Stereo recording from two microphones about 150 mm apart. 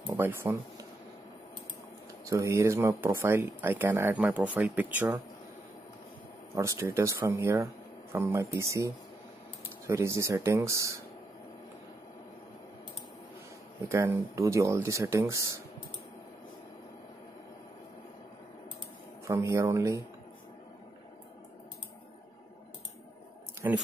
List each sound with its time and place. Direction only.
0.0 s speech: 15° right (ahead or behind)
2.2 s speech: 20° right (ahead or behind)
6.5 s speech: 20° right (ahead or behind)
13.8 s speech: 15° right (ahead or behind)
19.2 s speech: 20° right (ahead or behind)
23.6 s speech: 15° right (ahead or behind)